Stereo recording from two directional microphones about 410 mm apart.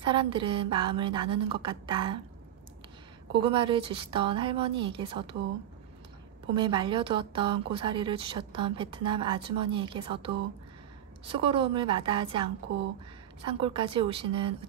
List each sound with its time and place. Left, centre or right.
0.0 s speech: centre
3.3 s speech: centre
6.5 s speech: centre
13.5 s speech: centre